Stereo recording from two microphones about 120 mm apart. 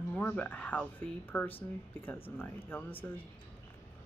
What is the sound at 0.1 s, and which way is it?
Speech, 15° left (ahead or behind).